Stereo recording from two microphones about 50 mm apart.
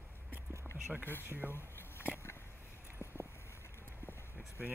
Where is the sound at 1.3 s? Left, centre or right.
Left.